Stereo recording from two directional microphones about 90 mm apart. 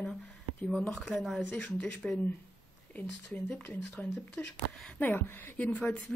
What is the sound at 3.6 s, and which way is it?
Speech, 20° left (ahead or behind).